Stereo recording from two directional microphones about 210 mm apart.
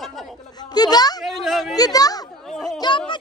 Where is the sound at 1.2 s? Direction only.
Centre (ahead or behind).